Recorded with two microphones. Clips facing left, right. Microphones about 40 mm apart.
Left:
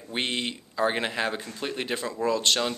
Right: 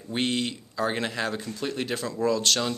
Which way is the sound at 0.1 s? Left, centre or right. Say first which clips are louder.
Right 2 dB; centre.